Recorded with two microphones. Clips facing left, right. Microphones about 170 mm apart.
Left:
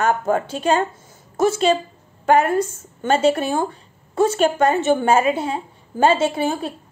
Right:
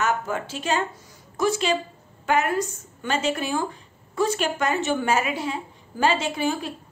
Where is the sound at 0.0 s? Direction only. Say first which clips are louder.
Left 6 dB; 40° left (ahead or behind).